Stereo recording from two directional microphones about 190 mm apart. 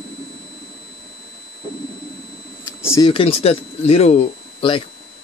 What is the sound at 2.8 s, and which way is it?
Speech, 15° left (ahead or behind).